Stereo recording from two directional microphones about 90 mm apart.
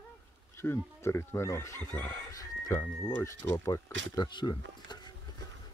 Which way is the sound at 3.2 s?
30° left (ahead or behind).